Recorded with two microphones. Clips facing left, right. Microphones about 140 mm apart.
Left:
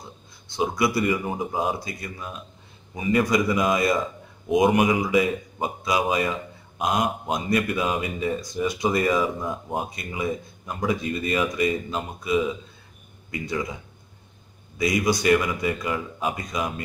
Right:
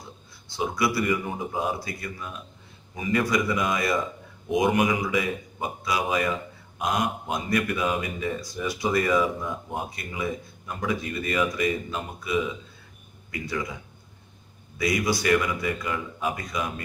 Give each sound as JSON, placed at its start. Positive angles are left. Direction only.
{"t": 0.6, "sound": "speech", "side_deg": 20}
{"t": 14.8, "sound": "speech", "side_deg": 20}